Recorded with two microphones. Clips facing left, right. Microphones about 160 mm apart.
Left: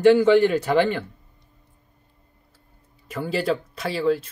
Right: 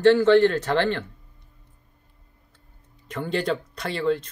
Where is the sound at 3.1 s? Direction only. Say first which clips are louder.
Left 2 dB; 5° left (ahead or behind).